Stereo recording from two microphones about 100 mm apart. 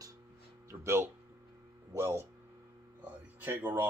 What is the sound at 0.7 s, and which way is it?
Music, 25° right (ahead or behind).